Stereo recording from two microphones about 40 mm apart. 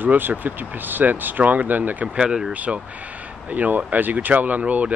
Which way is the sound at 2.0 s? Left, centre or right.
Right.